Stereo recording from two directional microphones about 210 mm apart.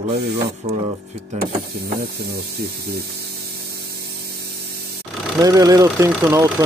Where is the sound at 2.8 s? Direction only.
50° right (ahead or behind).